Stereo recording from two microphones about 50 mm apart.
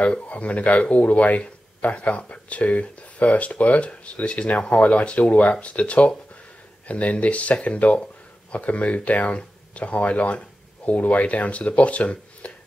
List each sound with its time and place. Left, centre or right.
0.0 s speech: left